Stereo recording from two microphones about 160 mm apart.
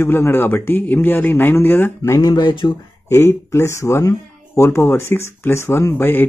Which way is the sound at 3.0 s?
15° left (ahead or behind).